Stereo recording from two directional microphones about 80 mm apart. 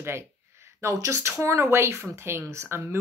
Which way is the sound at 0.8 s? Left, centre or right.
Right.